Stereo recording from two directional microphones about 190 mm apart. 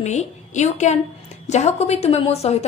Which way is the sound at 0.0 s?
35° left (ahead or behind).